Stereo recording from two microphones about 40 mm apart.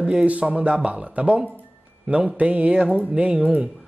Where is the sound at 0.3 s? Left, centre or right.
Right.